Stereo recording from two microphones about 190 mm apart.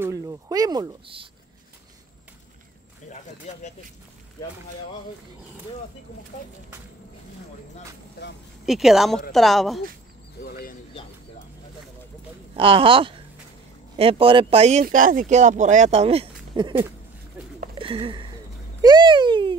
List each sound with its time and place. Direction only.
0.0 s speech: 15° right (ahead or behind)
8.6 s speech: centre (ahead or behind)
10.4 s a sound: 50° left (ahead or behind)
12.5 s speech: 30° right (ahead or behind)
17.7 s a sound: 30° right (ahead or behind)
18.8 s speech: 20° right (ahead or behind)